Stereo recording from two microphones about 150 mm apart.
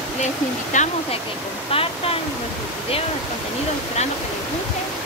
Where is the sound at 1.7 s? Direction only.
40° left (ahead or behind).